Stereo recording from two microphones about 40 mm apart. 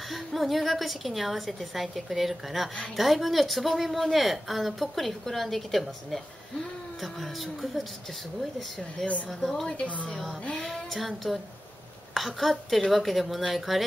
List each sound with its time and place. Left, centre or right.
0.1 s speech: centre
9.0 s speech: centre
9.7 s a woman's voice: left
10.0 s a sound: centre
10.7 s speech: centre